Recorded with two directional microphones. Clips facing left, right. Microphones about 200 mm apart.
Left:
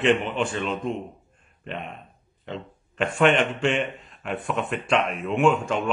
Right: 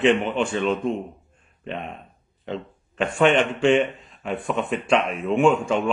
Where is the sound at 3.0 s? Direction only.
Centre (ahead or behind).